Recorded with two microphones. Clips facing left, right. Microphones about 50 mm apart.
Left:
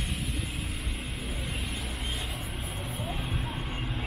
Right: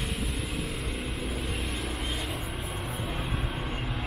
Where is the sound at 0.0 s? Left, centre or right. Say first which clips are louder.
Right 2 dB; centre.